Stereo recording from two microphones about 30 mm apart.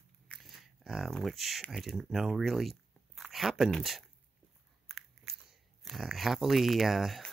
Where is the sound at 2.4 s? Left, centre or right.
Centre.